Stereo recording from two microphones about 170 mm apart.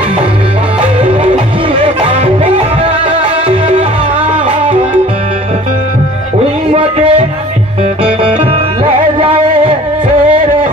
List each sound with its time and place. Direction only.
1.0 s music: 30° right (ahead or behind)
6.7 s a sound: 30° right (ahead or behind)
9.2 s music: 30° right (ahead or behind)